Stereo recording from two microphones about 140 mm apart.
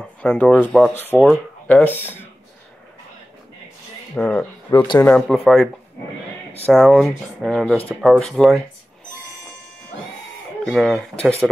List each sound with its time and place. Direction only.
0.0 s speech: 5° left (ahead or behind)
4.1 s speech: 10° left (ahead or behind)
4.7 s speech: 25° left (ahead or behind)
5.0 s speech: 10° left (ahead or behind)
10.6 s speech: centre (ahead or behind)